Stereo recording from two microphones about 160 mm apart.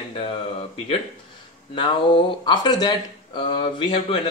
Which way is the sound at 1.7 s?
30° left (ahead or behind).